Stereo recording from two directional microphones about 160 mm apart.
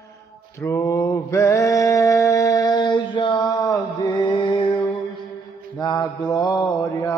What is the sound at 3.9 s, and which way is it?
Music, 30° left (ahead or behind).